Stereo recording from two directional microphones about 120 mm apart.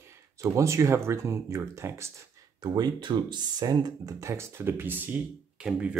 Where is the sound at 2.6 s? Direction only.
35° right (ahead or behind).